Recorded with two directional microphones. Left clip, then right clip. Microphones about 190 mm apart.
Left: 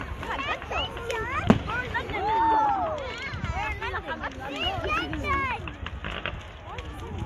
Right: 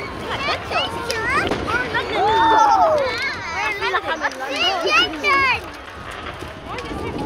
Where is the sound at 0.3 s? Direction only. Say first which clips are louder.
Right 8 dB; centre (ahead or behind).